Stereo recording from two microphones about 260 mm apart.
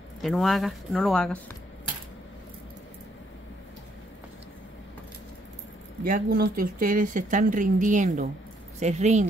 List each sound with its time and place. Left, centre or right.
0.2 s speech: centre
6.0 s speech: right